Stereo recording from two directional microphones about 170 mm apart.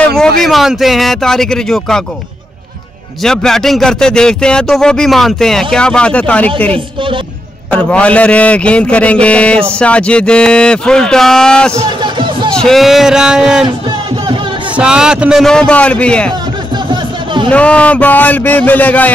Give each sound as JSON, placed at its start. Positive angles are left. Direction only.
{"t": 0.4, "sound": "a man's voice", "side_deg": 0}
{"t": 3.2, "sound": "a man's voice", "side_deg": 5}
{"t": 11.7, "sound": "music", "side_deg": -30}
{"t": 12.5, "sound": "a man's voice", "side_deg": 0}
{"t": 13.7, "sound": "music", "side_deg": -25}
{"t": 14.8, "sound": "a man's voice", "side_deg": -5}
{"t": 16.9, "sound": "music", "side_deg": -30}
{"t": 17.5, "sound": "a man's voice", "side_deg": 5}